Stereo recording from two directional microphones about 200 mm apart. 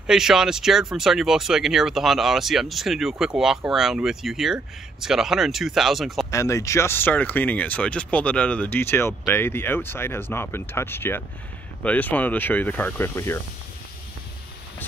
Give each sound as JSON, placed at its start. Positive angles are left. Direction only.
{"t": 0.0, "sound": "speech", "side_deg": -5}
{"t": 6.3, "sound": "speech", "side_deg": 15}